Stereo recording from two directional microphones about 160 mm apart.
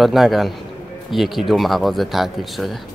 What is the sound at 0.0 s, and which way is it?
Speech, centre (ahead or behind).